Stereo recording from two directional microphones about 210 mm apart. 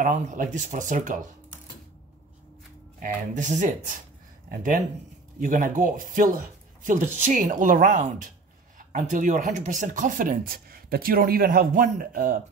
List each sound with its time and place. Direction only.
0.0 s speech: 35° right (ahead or behind)
3.0 s speech: 40° right (ahead or behind)